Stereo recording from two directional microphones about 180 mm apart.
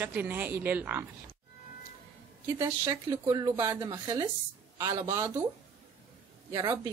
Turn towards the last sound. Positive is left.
turn(degrees=-20)  # may be behind; listen again after turning